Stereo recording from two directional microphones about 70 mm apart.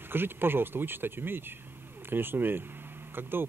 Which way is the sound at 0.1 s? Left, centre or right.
Right.